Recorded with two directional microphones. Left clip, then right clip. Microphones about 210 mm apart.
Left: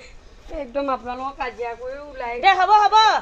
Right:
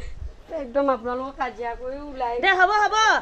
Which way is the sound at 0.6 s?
20° right (ahead or behind).